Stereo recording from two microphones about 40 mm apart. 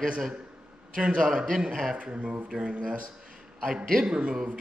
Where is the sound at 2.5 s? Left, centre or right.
Right.